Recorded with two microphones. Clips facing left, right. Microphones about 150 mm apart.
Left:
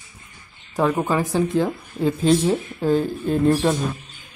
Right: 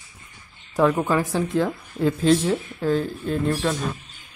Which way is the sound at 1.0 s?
15° left (ahead or behind).